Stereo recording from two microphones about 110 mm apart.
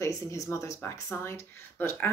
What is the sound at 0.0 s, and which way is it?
Speech, 30° left (ahead or behind).